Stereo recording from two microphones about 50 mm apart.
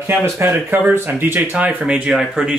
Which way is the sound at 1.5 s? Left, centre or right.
Right.